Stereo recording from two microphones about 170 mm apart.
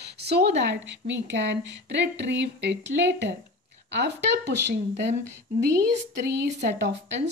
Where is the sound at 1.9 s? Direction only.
80° right.